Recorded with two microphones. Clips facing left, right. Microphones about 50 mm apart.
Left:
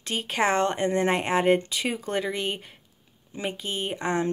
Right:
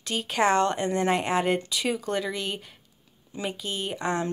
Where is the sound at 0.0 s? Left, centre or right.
Left.